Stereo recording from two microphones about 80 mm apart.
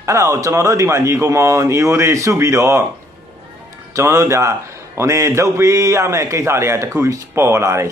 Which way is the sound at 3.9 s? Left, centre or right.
Right.